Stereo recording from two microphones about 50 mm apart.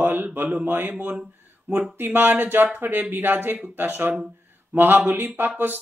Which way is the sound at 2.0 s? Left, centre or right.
Right.